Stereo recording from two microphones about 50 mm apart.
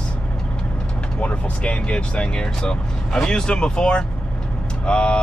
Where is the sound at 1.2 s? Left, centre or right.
Left.